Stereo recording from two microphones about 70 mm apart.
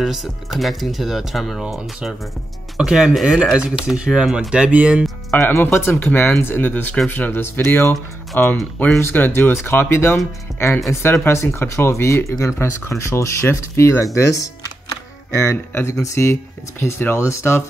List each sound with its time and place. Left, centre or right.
0.0 s speech: centre
2.8 s speech: centre
5.3 s speech: left